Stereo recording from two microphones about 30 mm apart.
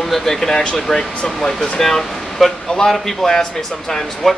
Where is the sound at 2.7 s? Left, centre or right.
Left.